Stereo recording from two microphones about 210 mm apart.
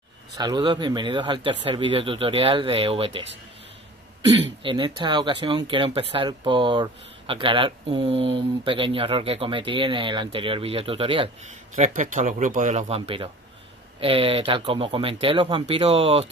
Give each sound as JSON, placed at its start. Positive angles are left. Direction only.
{"t": 0.4, "sound": "speech", "side_deg": -20}
{"t": 4.6, "sound": "speech", "side_deg": -20}
{"t": 11.7, "sound": "speech", "side_deg": -40}